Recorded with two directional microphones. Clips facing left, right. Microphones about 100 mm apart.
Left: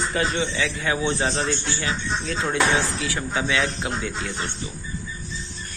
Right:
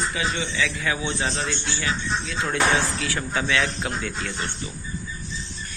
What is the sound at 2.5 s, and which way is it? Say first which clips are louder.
Speech: even; 20° left (ahead or behind).